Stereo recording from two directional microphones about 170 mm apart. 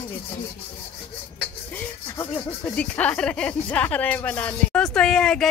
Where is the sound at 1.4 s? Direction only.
10° left (ahead or behind).